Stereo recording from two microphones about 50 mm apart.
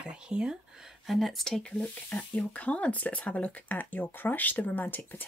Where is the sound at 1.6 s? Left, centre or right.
Centre.